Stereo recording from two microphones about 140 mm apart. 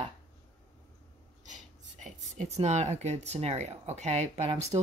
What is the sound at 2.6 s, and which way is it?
Speech, 55° right (ahead or behind).